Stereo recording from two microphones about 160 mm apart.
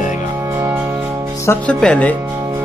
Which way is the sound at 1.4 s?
10° left (ahead or behind).